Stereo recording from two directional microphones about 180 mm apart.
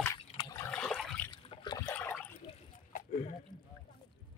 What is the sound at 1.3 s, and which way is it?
Water, 25° left (ahead or behind).